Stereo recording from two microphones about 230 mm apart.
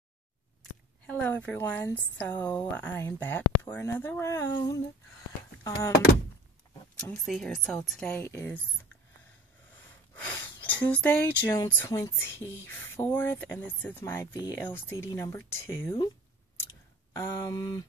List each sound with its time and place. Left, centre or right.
1.0 s speech: centre
7.0 s speech: centre
10.1 s speech: centre
17.1 s speech: centre